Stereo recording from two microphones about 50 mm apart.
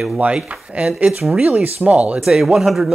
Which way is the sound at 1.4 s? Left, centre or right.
Right.